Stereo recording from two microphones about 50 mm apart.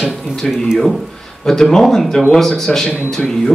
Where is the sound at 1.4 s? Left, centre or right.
Centre.